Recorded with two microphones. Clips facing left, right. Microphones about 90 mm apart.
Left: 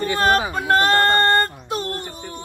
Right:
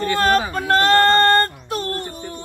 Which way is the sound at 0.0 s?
15° left (ahead or behind).